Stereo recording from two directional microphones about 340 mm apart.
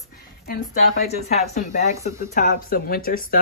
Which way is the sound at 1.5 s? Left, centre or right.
Centre.